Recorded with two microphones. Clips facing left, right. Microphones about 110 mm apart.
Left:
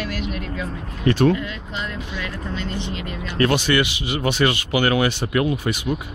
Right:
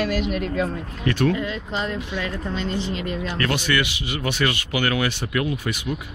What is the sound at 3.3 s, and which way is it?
Speech, 25° left (ahead or behind).